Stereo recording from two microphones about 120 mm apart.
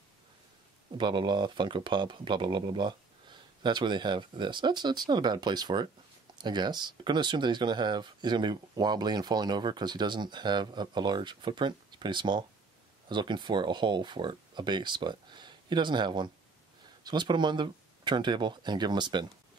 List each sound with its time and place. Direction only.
0.9 s speech: 40° right (ahead or behind)